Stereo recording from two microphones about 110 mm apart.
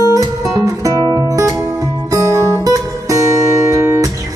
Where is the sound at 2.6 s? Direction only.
30° right (ahead or behind).